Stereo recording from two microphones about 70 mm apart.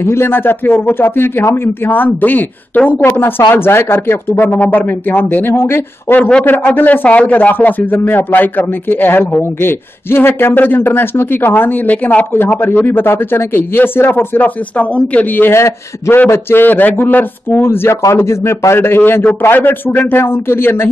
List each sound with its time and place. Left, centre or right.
0.0 s speech: left